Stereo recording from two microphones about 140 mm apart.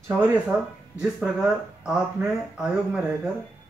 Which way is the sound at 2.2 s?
20° right (ahead or behind).